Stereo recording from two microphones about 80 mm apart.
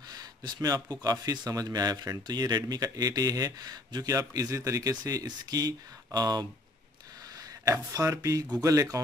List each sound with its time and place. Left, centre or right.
0.1 s a sound: right
1.2 s speech: right
7.7 s speech: right